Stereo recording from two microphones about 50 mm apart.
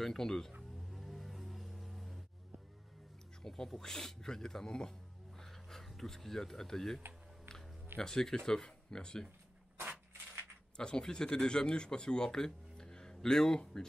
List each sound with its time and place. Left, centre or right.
0.0 s speech: centre
0.6 s music: centre
3.4 s speech: centre
8.0 s speech: centre
9.8 s a sound: right
10.8 s speech: centre